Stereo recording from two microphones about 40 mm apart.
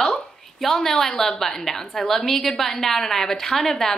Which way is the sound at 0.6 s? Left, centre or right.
Centre.